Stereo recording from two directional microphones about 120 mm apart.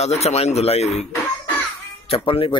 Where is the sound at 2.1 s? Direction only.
50° left (ahead or behind).